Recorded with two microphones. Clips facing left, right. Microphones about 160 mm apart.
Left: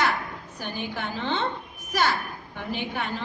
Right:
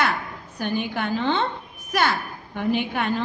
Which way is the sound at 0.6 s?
60° right (ahead or behind).